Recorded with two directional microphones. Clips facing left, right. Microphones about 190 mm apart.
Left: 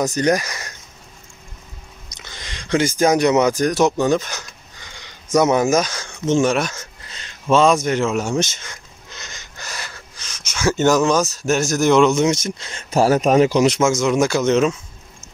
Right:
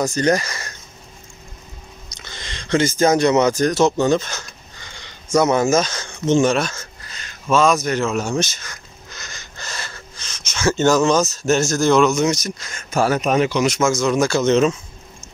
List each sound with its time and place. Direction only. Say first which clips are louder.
0.0 s speech: even; 15° left (ahead or behind)
2.1 s a sound: right 1 dB; 15° left (ahead or behind)
8.0 s speech: left 1 dB; 10° left (ahead or behind); by 13.7 s 35° left (ahead or behind)
13.8 s speech: left 1 dB; 20° left (ahead or behind)